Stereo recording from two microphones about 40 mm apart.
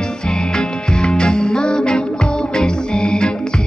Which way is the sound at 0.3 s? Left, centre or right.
Centre.